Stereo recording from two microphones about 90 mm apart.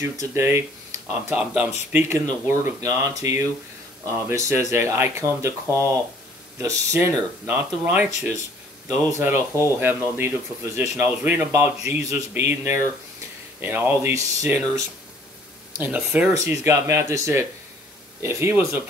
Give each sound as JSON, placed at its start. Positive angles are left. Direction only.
{"t": 0.0, "sound": "speech", "side_deg": -30}
{"t": 1.3, "sound": "speech", "side_deg": -15}
{"t": 14.1, "sound": "speech", "side_deg": -35}
{"t": 15.8, "sound": "speech", "side_deg": -15}
{"t": 16.4, "sound": "speech", "side_deg": -30}